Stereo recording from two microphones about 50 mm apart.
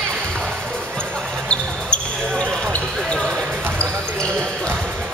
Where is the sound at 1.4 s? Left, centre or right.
Left.